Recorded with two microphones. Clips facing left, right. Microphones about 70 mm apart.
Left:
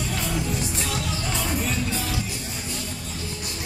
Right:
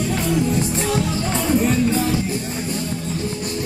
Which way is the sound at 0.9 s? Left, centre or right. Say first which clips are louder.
Right 7 dB; right.